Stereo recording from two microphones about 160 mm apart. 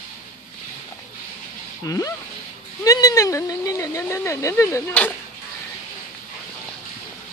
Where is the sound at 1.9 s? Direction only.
20° left (ahead or behind).